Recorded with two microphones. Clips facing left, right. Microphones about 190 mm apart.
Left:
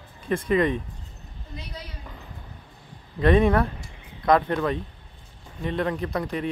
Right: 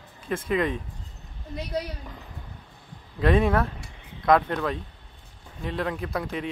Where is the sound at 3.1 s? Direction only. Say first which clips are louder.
Left 3 dB; centre (ahead or behind).